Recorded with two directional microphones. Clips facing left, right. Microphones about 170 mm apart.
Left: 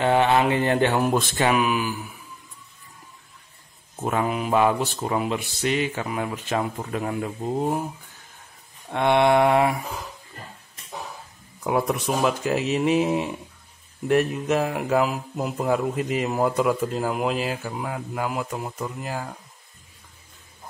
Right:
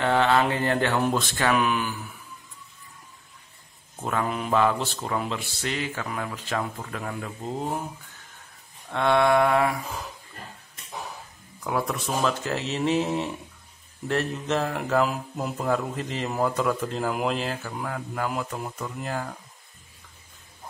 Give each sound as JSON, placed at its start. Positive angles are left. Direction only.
{"t": 0.0, "sound": "mantra", "side_deg": 20}
{"t": 1.0, "sound": "speech", "side_deg": 15}
{"t": 1.6, "sound": "speech", "side_deg": 10}
{"t": 4.0, "sound": "speech", "side_deg": 15}
{"t": 8.9, "sound": "mantra", "side_deg": 20}
{"t": 11.6, "sound": "speech", "side_deg": 20}